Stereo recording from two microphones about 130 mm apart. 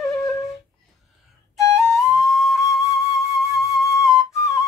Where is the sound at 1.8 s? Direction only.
Centre (ahead or behind).